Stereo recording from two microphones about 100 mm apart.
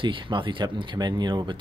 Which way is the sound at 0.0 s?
55° right (ahead or behind).